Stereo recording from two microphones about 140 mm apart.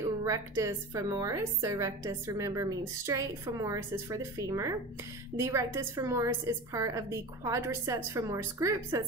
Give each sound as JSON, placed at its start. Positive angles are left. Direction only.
{"t": 0.2, "sound": "a woman's voice", "side_deg": -20}